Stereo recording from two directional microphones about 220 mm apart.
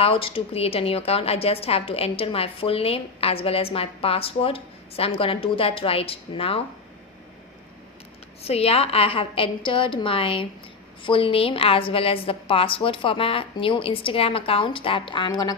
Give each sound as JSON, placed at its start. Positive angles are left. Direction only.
{"t": 0.0, "sound": "a woman's voice", "side_deg": 25}
{"t": 8.5, "sound": "a woman's voice", "side_deg": 25}